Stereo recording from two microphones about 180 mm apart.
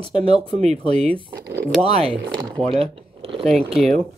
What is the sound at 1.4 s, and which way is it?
Speech, 65° right (ahead or behind).